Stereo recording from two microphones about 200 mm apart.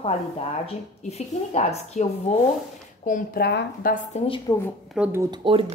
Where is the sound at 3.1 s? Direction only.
45° left (ahead or behind).